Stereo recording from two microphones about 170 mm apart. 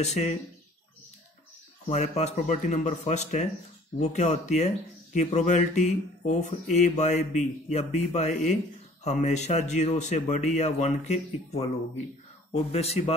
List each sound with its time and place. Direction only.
0.0 s speech: 40° left (ahead or behind)
1.9 s speech: 40° left (ahead or behind)
12.7 s speech: 35° left (ahead or behind)